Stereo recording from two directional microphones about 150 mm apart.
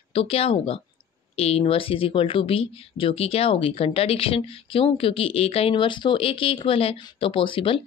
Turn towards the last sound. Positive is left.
turn(degrees=35)  # may be behind; listen again after turning